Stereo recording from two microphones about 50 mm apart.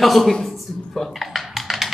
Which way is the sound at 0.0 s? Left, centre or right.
Centre.